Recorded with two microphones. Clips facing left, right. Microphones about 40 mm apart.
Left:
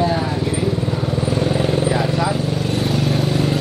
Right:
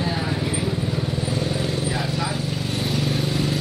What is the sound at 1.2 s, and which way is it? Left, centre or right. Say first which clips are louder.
Vehicle: left 9 dB; left.